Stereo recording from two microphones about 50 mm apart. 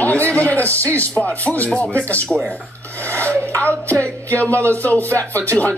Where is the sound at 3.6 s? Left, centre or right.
Left.